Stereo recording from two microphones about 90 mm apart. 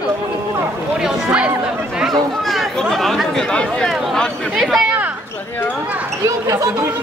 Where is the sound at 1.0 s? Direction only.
10° right (ahead or behind).